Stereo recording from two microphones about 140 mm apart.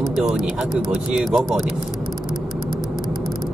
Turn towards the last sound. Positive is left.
turn(degrees=-5)  # may be behind; listen again after turning